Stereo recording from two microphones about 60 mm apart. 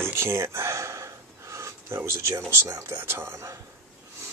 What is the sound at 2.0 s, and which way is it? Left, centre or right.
Speech, right.